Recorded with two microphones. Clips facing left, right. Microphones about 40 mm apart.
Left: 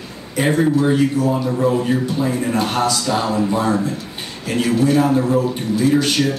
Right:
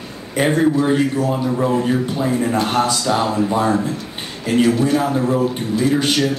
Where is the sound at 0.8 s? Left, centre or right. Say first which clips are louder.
Left 1 dB; centre.